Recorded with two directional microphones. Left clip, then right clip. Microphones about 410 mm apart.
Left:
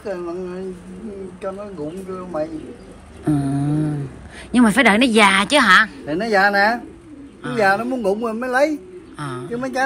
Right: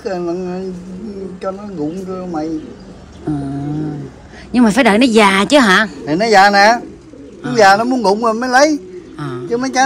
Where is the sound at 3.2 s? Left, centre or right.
Centre.